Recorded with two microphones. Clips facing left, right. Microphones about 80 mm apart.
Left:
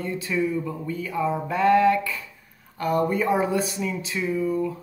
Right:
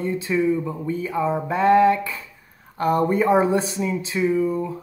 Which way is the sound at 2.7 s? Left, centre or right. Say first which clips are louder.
Right 3 dB; right.